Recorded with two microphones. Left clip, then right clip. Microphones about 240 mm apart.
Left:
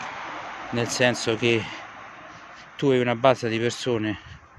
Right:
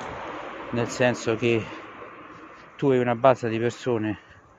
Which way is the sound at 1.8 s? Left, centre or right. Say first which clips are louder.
Left 1 dB; left.